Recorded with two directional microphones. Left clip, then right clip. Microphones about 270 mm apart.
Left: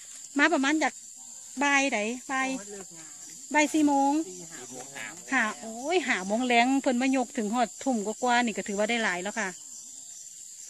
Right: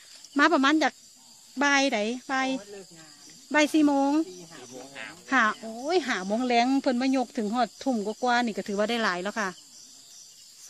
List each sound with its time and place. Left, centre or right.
0.3 s speech: centre
5.3 s speech: centre